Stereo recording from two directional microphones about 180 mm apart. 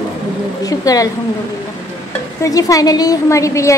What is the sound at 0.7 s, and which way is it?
Speech, 20° left (ahead or behind).